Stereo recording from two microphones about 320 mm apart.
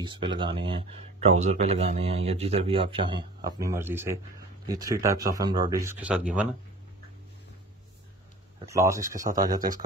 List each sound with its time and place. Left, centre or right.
0.0 s speech: centre
8.5 s speech: centre